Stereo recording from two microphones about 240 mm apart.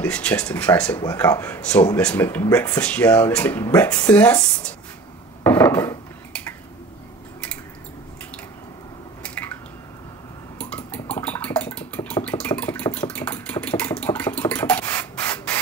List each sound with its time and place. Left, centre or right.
0.0 s speech: centre
5.4 s dishes: centre
9.2 s drip: centre
10.6 s dishes: centre
12.3 s engine: centre